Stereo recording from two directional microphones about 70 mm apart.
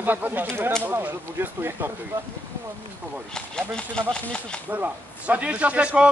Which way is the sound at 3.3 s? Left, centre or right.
Centre.